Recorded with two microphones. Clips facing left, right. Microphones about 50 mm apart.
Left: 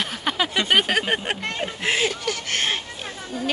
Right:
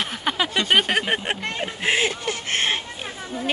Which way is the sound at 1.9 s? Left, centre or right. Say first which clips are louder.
Right 1 dB; centre.